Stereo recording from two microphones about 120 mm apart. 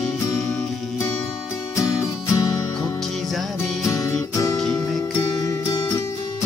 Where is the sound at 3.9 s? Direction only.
30° left (ahead or behind).